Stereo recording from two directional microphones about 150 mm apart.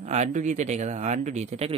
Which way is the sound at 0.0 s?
50° right (ahead or behind).